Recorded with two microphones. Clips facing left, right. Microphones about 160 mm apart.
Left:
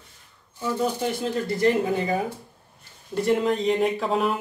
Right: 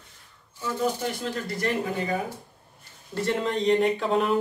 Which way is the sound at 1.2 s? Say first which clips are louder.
Left 6 dB; 20° left (ahead or behind).